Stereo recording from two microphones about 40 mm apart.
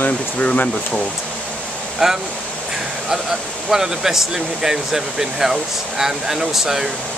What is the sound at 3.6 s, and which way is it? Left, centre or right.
Speech, centre.